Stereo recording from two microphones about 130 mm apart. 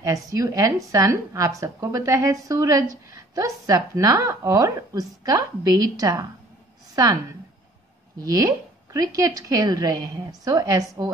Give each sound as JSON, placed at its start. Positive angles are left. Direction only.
{"t": 0.0, "sound": "speech", "side_deg": -25}
{"t": 8.3, "sound": "speech", "side_deg": -25}